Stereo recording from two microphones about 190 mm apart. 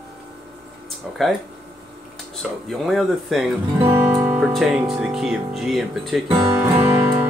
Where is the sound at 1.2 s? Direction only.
Centre (ahead or behind).